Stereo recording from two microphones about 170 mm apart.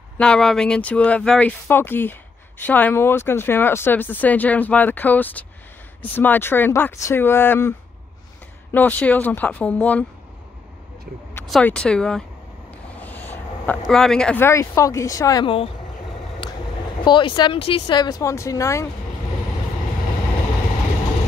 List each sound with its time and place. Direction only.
0.2 s speech: 5° left (ahead or behind)
8.7 s speech: 10° left (ahead or behind)
11.4 s speech: 5° left (ahead or behind); by 15.4 s 20° left (ahead or behind)
15.4 s speech: 35° left (ahead or behind)
17.0 s speech: 30° left (ahead or behind)